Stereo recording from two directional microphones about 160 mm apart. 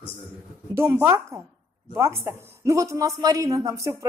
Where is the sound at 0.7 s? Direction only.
15° right (ahead or behind).